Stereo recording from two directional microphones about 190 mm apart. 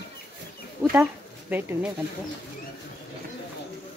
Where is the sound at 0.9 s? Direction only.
10° right (ahead or behind).